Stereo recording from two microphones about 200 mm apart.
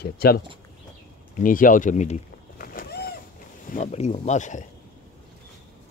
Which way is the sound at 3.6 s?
35° left (ahead or behind).